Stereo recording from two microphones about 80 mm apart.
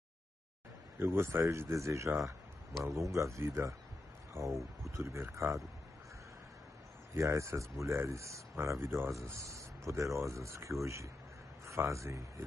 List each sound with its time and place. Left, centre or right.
0.9 s speech: right
7.2 s speech: right